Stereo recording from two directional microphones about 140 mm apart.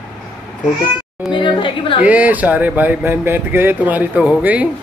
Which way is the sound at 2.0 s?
10° right (ahead or behind).